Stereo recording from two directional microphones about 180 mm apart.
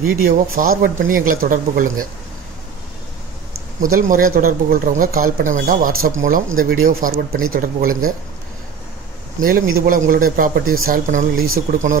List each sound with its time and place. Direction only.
0.0 s speech: 50° right (ahead or behind)
3.8 s speech: 50° right (ahead or behind)
9.4 s speech: 50° right (ahead or behind)